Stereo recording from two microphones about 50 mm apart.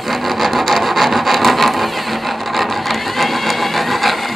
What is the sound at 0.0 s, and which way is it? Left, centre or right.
Wood, centre.